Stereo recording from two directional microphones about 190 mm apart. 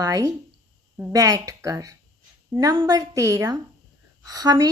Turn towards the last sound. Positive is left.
turn(degrees=-20)  # may be behind; listen again after turning